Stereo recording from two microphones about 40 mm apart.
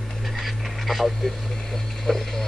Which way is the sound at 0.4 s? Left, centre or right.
Centre.